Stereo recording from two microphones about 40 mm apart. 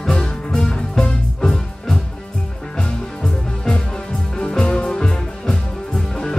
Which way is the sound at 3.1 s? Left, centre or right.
Centre.